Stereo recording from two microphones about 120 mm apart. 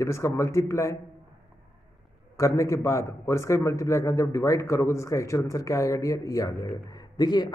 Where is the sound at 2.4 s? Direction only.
25° left (ahead or behind).